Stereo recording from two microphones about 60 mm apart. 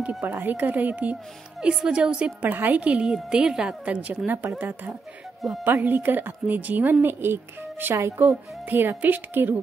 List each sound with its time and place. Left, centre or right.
0.2 s a woman's voice: right
1.6 s a woman's voice: centre
2.5 s a woman's voice: right